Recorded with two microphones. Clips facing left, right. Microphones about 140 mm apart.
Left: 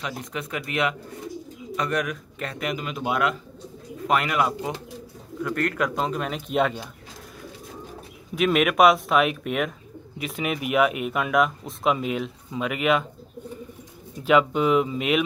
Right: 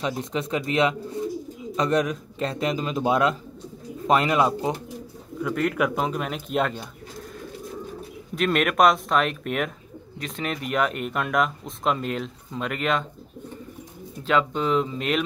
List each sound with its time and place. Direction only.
0.0 s speech: 25° right (ahead or behind)
5.4 s speech: 5° right (ahead or behind)
8.4 s speech: 5° left (ahead or behind)
14.2 s speech: 10° left (ahead or behind)